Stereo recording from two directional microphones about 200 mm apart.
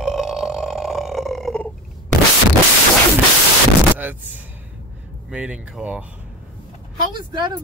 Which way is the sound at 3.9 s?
10° right (ahead or behind).